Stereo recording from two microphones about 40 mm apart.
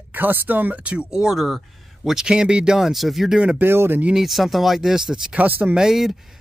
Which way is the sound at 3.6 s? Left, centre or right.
Right.